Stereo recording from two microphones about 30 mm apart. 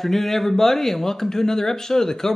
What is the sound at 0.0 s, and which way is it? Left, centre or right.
Speech, centre.